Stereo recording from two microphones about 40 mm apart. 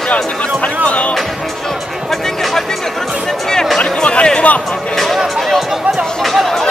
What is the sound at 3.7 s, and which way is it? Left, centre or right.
Music, left.